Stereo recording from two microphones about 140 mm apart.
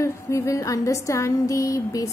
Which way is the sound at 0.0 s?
20° left (ahead or behind).